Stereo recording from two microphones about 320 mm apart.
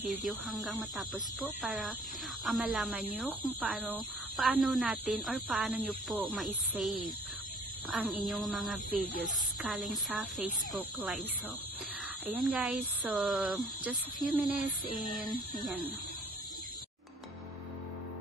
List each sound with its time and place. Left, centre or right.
0.2 s speech: centre
12.3 s speech: centre
14.9 s music: right